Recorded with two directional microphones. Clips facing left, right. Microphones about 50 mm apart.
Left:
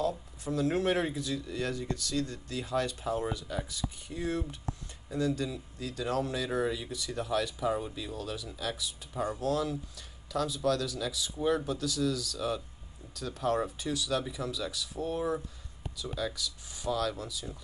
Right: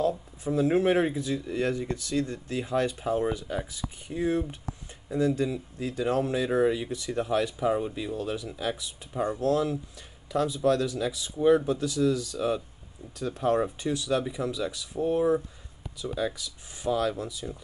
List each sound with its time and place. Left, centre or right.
0.0 s speech: centre